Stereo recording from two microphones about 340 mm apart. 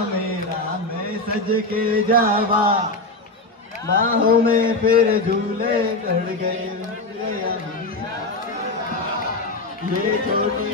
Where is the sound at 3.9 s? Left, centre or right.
Right.